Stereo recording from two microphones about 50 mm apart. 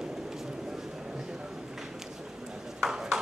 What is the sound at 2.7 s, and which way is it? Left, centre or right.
Ping, centre.